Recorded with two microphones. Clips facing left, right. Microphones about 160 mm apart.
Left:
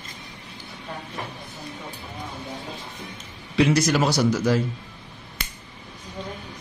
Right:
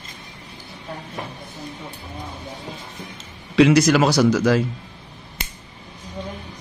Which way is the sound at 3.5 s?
90° right.